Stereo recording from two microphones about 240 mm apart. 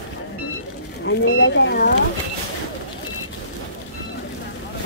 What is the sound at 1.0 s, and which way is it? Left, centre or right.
Speech, left.